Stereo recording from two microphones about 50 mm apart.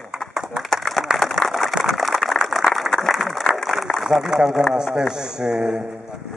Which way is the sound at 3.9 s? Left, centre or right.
Left.